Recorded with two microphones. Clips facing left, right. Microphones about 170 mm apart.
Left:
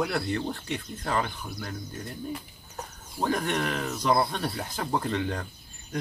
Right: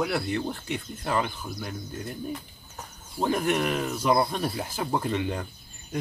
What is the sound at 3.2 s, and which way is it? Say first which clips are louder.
Speech: right 3 dB; 5° right (ahead or behind).